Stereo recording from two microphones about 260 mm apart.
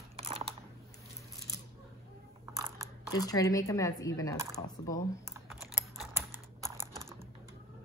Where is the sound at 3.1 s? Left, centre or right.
Centre.